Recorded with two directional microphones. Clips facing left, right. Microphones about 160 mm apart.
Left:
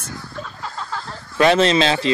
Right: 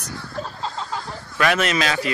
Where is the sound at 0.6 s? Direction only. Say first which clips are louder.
Left 1 dB; 20° right (ahead or behind).